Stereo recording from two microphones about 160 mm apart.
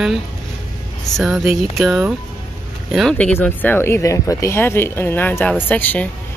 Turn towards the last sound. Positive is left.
turn(degrees=10)  # may be behind; listen again after turning